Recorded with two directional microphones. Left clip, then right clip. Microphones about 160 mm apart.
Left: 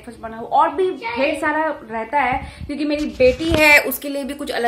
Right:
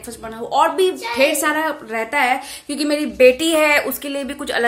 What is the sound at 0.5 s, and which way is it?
A woman's voice, 15° right (ahead or behind).